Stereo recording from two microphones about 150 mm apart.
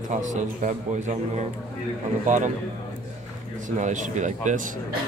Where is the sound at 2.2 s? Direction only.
55° right (ahead or behind).